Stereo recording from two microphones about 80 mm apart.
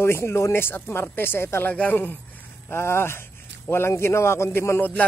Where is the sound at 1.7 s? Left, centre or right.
Centre.